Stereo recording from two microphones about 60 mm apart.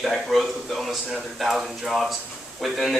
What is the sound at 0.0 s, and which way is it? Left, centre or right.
A man's voice, centre.